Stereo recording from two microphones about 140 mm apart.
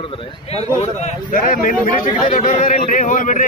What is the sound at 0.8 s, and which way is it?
Speech, 65° left (ahead or behind).